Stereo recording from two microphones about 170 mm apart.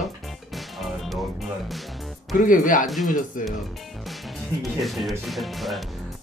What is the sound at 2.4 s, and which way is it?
Speech, 50° left (ahead or behind).